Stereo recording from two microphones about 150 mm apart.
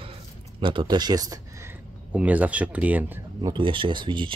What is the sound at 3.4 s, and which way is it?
Speech, 35° right (ahead or behind).